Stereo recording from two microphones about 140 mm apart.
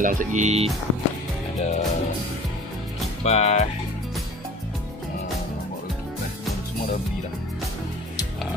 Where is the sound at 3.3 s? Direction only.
50° left (ahead or behind).